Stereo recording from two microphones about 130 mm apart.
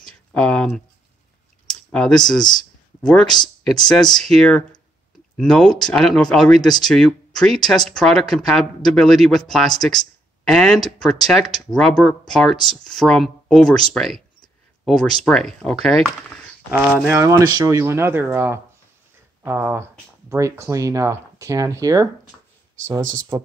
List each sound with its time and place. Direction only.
0.0 s a sound: 10° left (ahead or behind)
1.7 s speech: 5° left (ahead or behind)
16.7 s speech: 15° right (ahead or behind)